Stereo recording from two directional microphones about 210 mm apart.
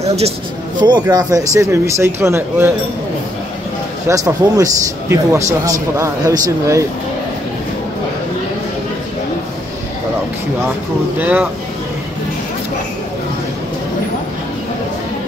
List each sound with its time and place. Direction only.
0.0 s speech: 30° right (ahead or behind); by 2.7 s 10° right (ahead or behind)
4.1 s speech: 15° right (ahead or behind)
11.1 s speech: 10° right (ahead or behind)